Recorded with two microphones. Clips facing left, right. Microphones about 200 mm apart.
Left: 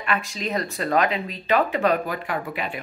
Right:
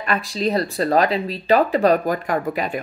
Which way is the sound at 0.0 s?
35° right (ahead or behind).